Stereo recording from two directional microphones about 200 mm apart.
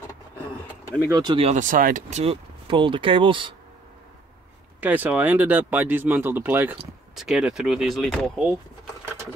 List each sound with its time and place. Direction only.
1.0 s speech: 20° right (ahead or behind)
1.5 s speech: 40° right (ahead or behind); by 3.5 s 25° right (ahead or behind)
4.7 s speech: 10° right (ahead or behind)